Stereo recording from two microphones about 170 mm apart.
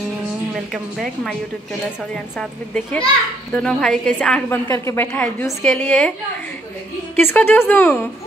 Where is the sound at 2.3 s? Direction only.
5° left (ahead or behind).